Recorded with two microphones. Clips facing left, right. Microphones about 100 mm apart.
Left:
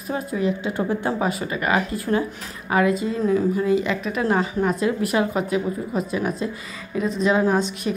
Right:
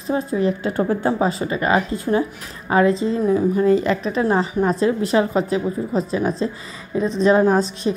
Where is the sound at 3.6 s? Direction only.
40° right (ahead or behind).